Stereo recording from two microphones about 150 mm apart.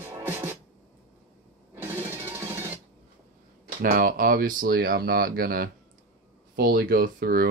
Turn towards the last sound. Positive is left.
turn(degrees=-75)  # may be behind; listen again after turning